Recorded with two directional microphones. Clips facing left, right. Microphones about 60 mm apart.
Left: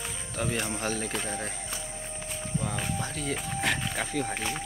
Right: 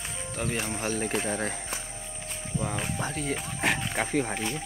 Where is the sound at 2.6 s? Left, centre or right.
Right.